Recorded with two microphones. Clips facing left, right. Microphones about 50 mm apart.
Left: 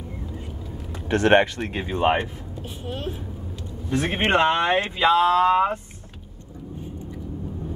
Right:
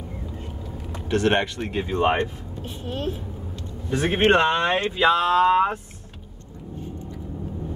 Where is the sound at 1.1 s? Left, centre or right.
Left.